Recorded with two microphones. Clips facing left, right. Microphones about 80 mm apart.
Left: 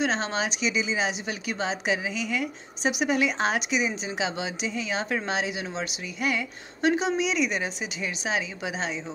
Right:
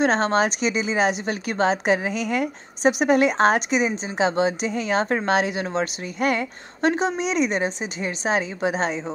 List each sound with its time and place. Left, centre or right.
0.0 s speech: right